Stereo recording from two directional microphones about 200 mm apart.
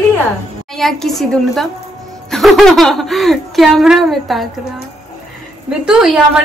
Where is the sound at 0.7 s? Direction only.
Centre (ahead or behind).